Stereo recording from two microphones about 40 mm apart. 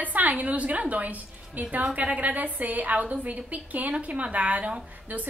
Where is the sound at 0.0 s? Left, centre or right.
Right.